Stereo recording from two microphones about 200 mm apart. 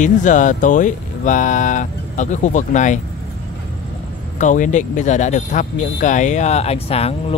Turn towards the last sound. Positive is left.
turn(degrees=30)  # may be behind; listen again after turning